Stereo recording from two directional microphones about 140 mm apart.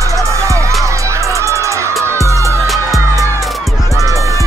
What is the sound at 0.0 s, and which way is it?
Music, 20° right (ahead or behind).